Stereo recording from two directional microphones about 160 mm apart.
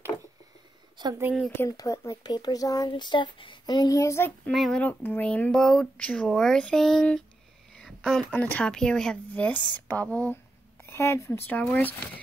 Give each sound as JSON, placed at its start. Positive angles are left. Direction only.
{"t": 0.9, "sound": "a woman's voice", "side_deg": -25}
{"t": 1.5, "sound": "speech", "side_deg": 15}
{"t": 4.5, "sound": "speech", "side_deg": 0}